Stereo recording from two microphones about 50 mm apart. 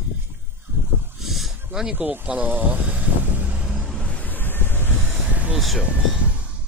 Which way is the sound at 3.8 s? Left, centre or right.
Centre.